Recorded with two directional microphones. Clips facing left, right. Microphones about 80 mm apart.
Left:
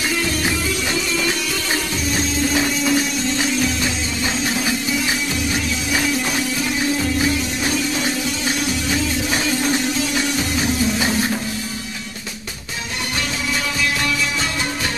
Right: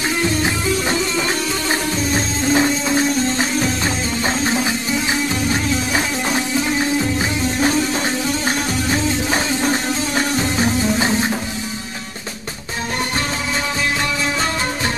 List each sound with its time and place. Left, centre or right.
0.2 s music: right
13.7 s music: right